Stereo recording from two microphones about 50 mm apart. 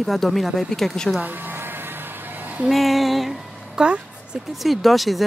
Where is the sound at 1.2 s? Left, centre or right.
Right.